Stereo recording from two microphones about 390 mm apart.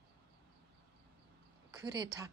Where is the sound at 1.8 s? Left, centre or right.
Centre.